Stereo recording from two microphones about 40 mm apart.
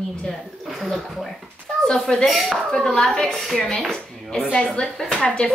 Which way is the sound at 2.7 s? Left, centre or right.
Centre.